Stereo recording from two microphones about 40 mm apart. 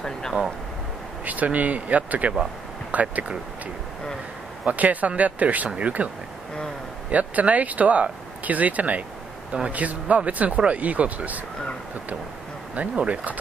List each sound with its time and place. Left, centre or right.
0.0 s speech: centre
1.2 s speech: right
4.6 s speech: right
7.1 s speech: right
12.9 s speech: right